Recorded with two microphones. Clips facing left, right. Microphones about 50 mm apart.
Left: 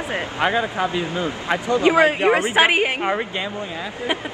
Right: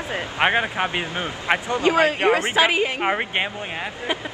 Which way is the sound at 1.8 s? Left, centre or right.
Left.